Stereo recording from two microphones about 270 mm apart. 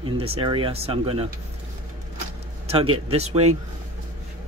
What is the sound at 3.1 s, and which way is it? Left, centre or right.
Speech, right.